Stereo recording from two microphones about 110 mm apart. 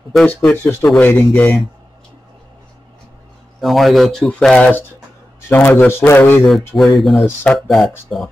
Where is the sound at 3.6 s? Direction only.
Centre (ahead or behind).